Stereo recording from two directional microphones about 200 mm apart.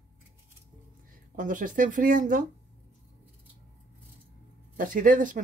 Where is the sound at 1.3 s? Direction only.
40° right (ahead or behind).